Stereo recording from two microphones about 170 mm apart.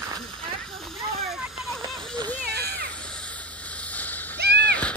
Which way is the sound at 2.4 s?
70° right (ahead or behind).